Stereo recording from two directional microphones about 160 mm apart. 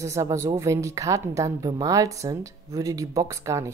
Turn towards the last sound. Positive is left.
turn(degrees=-20)  # may be behind; listen again after turning